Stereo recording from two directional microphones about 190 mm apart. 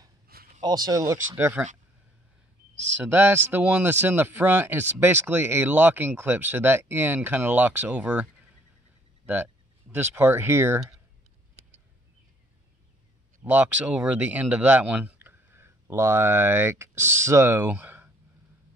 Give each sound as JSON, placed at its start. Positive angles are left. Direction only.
{"t": 0.6, "sound": "speech", "side_deg": -20}
{"t": 3.0, "sound": "speech", "side_deg": -10}
{"t": 13.4, "sound": "speech", "side_deg": -10}